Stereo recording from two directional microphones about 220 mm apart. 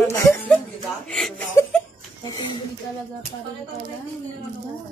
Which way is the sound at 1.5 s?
15° left (ahead or behind).